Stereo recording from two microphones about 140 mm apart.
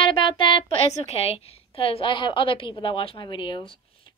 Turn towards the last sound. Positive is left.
turn(degrees=35)  # may be behind; listen again after turning